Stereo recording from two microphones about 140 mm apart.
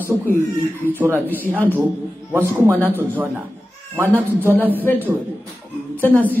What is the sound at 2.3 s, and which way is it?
Speech, 20° right (ahead or behind).